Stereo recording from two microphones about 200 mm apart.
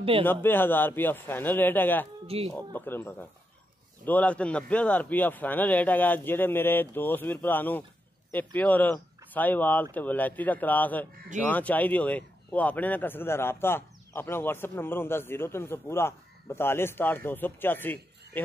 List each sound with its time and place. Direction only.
0.2 s speech: 10° left (ahead or behind)
2.2 s speech: 30° right (ahead or behind)
2.5 s speech: 10° left (ahead or behind)